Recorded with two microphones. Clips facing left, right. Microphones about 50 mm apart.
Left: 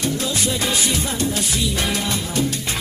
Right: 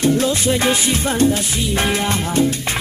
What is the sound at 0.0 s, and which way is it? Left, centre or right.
Music, right.